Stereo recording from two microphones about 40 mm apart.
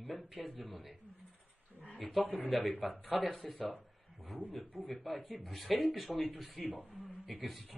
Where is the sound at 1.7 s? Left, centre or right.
Right.